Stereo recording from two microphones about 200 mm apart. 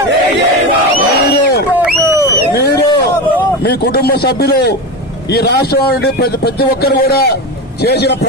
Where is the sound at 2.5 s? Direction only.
55° left (ahead or behind).